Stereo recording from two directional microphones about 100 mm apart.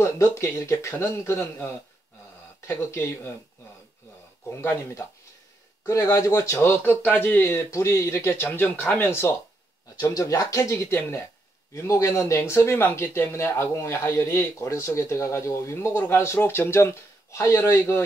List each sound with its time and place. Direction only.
0.0 s speech: 30° left (ahead or behind)
4.5 s speech: 25° left (ahead or behind)
9.9 s speech: 35° left (ahead or behind)